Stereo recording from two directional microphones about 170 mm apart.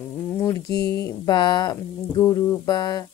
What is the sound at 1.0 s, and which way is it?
A woman's voice, 25° left (ahead or behind).